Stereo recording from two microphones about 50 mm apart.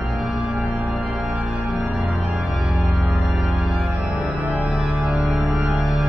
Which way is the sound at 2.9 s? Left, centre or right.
Centre.